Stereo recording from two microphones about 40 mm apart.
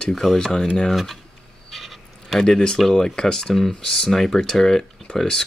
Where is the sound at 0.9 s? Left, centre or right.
Centre.